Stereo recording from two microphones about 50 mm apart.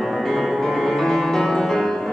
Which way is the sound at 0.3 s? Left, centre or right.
Centre.